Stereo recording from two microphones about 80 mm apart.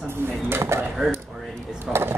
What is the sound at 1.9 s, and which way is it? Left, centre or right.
Speech, right.